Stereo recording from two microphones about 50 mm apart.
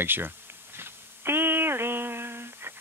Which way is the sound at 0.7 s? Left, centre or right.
Right.